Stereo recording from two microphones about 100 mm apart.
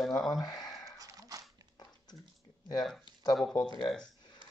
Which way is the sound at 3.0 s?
45° left (ahead or behind).